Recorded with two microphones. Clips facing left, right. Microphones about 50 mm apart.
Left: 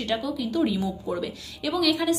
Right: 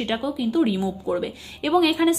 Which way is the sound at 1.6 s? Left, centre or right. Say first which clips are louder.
Right 5 dB; right.